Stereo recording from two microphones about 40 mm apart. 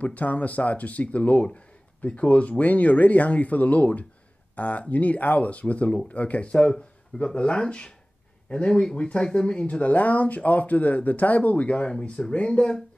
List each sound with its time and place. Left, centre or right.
0.0 s speech: left
7.6 s speech: centre
9.8 s speech: left
11.7 s speech: left